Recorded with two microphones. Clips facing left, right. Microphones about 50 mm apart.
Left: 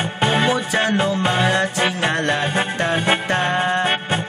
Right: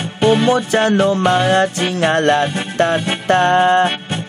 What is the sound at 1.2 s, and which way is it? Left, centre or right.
Music, left.